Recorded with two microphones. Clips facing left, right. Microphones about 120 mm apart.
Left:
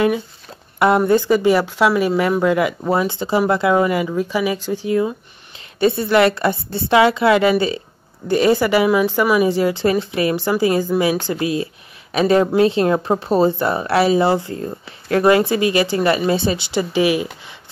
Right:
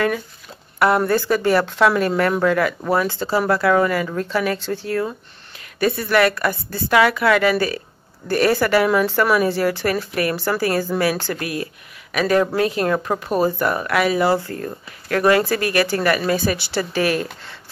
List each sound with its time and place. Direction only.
0.7 s speech: 20° left (ahead or behind)